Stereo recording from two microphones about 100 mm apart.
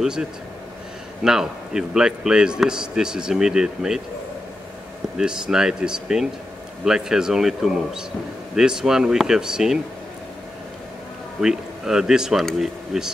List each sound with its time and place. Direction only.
0.0 s speech: 5° right (ahead or behind)
5.1 s speech: 5° right (ahead or behind)
11.4 s speech: 5° right (ahead or behind)